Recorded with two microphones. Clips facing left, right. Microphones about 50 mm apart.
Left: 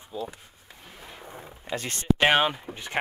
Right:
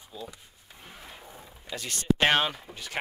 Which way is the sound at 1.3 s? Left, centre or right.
Left.